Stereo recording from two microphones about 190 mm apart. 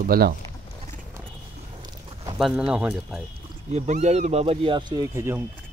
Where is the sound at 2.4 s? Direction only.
5° right (ahead or behind).